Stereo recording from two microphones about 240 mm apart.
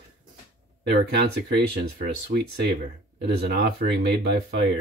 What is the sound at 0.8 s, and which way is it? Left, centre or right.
Speech, right.